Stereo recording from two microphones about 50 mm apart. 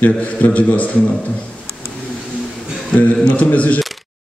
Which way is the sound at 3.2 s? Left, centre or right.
Left.